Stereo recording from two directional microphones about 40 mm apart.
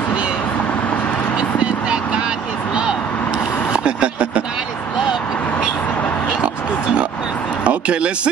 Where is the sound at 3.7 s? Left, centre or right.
Right.